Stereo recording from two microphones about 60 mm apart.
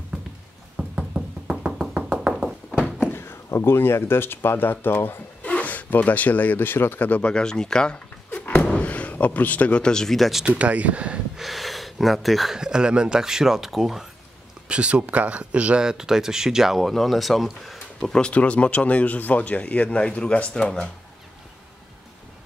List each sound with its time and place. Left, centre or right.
0.7 s music: centre
3.0 s a sound: left
3.4 s speech: left
7.2 s speech: centre
8.3 s a sound: left; by 10.4 s centre
10.4 s speech: right
11.3 s speech: centre
12.5 s speech: centre
14.7 s speech: centre
18.1 s speech: centre